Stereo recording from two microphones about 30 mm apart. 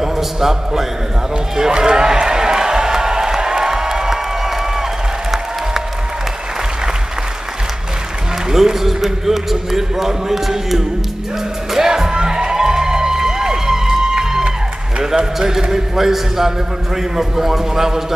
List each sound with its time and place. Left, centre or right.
0.0 s a man's voice: centre
1.7 s a sound: right
8.5 s a man's voice: centre
11.7 s music: centre
15.0 s a man's voice: centre